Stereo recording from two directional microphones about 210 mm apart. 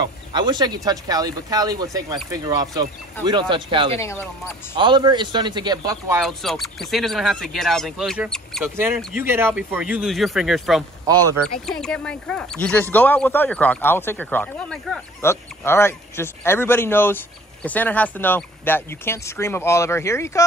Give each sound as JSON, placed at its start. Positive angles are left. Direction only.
{"t": 0.0, "sound": "a sound", "side_deg": -20}
{"t": 0.8, "sound": "a man's voice", "side_deg": -20}
{"t": 6.2, "sound": "speech", "side_deg": 0}
{"t": 8.7, "sound": "speech", "side_deg": -10}